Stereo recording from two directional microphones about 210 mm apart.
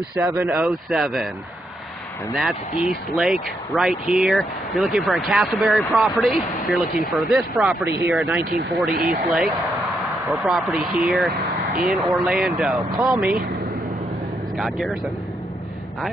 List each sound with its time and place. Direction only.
0.4 s speech: 5° right (ahead or behind)
2.3 s speech: centre (ahead or behind)
8.9 s speech: 40° right (ahead or behind)
9.2 s speech: centre (ahead or behind)
14.6 s speech: centre (ahead or behind)